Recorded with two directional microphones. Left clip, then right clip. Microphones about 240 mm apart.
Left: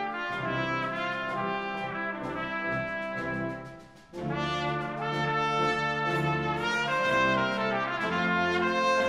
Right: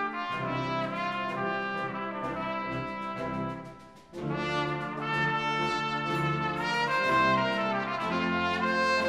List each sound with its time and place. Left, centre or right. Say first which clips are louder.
6.6 s brass instrument: right 1 dB; right